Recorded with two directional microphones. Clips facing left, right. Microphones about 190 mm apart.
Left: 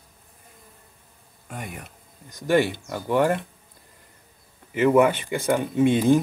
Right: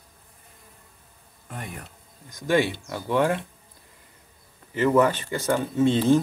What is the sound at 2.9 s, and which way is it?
Speech, 10° left (ahead or behind).